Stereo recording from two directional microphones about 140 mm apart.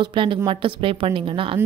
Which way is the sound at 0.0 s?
35° right (ahead or behind).